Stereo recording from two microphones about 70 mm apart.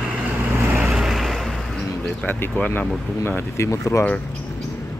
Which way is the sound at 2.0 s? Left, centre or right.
Left.